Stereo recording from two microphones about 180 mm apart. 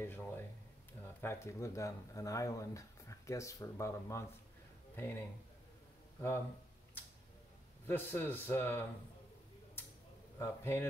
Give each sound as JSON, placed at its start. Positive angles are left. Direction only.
{"t": 0.0, "sound": "speech", "side_deg": 15}
{"t": 7.8, "sound": "speech", "side_deg": 10}
{"t": 10.4, "sound": "speech", "side_deg": 15}